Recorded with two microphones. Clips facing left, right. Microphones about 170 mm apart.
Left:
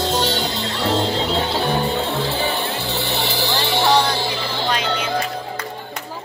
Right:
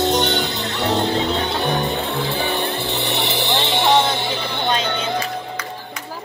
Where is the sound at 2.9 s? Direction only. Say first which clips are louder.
Right 1 dB; 20° right (ahead or behind).